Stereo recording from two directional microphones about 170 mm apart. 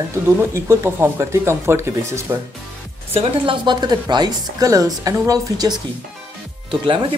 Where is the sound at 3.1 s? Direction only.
30° right (ahead or behind).